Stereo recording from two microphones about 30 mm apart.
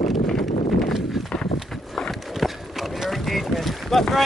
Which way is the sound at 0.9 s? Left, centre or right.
Centre.